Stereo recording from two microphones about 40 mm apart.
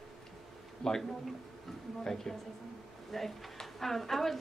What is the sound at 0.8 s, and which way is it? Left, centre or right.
Speech, centre.